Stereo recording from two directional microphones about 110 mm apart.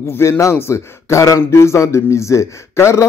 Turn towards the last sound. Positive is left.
turn(degrees=25)  # may be behind; listen again after turning